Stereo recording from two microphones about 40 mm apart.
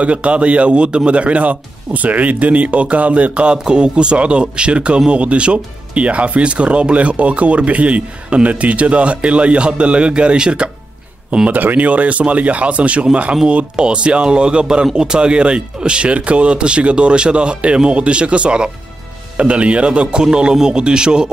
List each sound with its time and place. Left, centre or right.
0.0 s speech: right
3.5 s speech: centre
11.4 s speech: right